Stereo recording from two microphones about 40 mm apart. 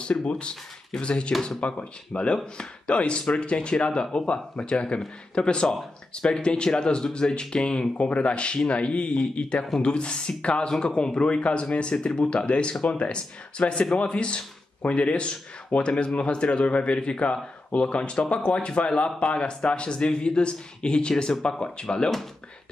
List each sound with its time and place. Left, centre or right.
0.0 s speech: left